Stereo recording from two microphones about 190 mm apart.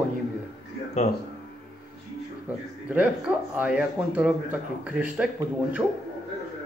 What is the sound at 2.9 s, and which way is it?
Speech, 5° right (ahead or behind).